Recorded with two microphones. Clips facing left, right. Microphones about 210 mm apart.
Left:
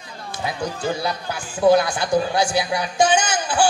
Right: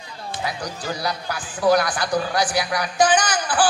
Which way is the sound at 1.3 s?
25° left (ahead or behind).